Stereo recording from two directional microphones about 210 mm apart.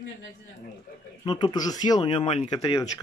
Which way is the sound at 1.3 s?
20° left (ahead or behind).